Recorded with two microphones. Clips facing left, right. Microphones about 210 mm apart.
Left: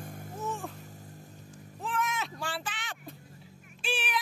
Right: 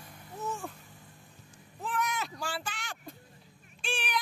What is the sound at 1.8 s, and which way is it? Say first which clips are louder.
Baby cry: even; centre (ahead or behind).